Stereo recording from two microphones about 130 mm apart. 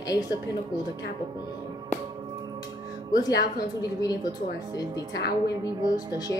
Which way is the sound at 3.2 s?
30° left (ahead or behind).